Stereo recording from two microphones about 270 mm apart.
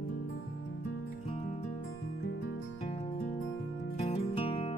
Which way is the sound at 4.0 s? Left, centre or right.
Left.